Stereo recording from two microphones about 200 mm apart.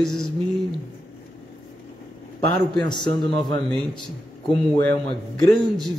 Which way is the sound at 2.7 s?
20° left (ahead or behind).